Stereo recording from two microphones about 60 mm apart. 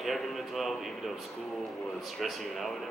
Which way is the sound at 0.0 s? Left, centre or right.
Centre.